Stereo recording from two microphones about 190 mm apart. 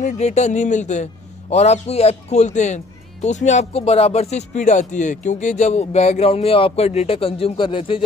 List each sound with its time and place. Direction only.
0.0 s speech: 35° left (ahead or behind)